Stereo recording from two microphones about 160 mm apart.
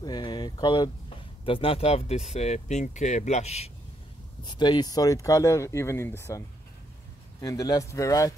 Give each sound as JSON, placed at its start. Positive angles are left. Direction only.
{"t": 0.0, "sound": "speech", "side_deg": 25}
{"t": 4.5, "sound": "speech", "side_deg": 25}